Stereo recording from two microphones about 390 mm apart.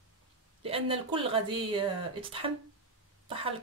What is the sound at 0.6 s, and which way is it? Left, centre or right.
Speech, centre.